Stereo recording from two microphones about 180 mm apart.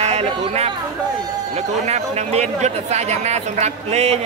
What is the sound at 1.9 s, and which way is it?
Speech, 40° right (ahead or behind).